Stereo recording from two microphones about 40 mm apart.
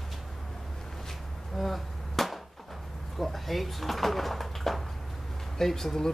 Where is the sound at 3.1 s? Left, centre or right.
Centre.